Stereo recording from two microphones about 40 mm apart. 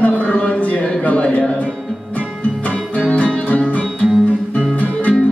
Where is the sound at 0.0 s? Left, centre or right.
Left.